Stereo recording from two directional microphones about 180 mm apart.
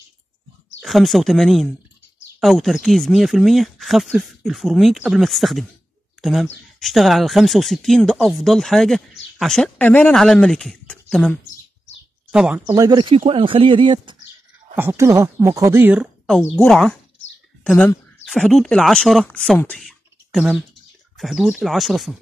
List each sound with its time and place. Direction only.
0.8 s speech: centre (ahead or behind)
12.6 s speech: 20° right (ahead or behind)
14.8 s speech: 15° right (ahead or behind)
16.5 s speech: 5° left (ahead or behind)
19.6 s a sound: 5° left (ahead or behind)
21.2 s speech: centre (ahead or behind)